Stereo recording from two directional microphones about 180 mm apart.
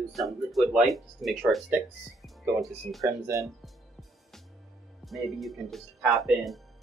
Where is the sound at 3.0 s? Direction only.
15° right (ahead or behind).